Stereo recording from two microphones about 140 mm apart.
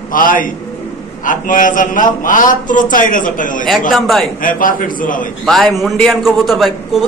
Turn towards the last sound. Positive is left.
turn(degrees=0)  # may be behind; listen again after turning